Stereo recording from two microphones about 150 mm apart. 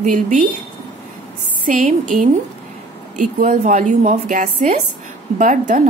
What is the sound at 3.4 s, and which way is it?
A woman's voice, 60° right (ahead or behind).